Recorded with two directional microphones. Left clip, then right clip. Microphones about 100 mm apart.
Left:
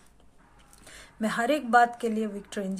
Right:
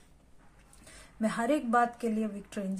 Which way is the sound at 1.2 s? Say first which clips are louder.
Left 3 dB; 15° left (ahead or behind).